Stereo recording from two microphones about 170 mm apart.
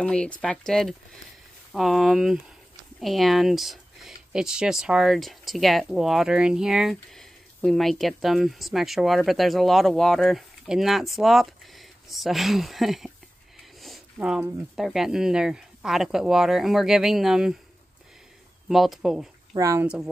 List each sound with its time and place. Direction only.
0.0 s speech: 5° left (ahead or behind)
13.7 s a sound: centre (ahead or behind)
14.8 s speech: centre (ahead or behind)
18.7 s speech: centre (ahead or behind)
19.5 s speech: 20° right (ahead or behind)